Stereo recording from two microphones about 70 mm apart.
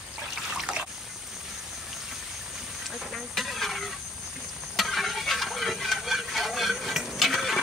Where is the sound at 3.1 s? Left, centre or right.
Centre.